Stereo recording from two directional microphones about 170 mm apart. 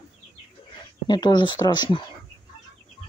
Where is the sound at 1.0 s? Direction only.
25° left (ahead or behind).